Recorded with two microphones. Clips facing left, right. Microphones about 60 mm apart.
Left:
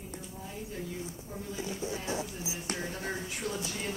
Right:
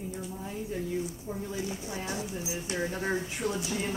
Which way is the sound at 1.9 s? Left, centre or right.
Right.